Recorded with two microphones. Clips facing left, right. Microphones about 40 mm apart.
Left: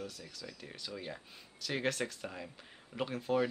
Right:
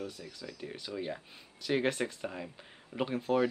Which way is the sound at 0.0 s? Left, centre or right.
Centre.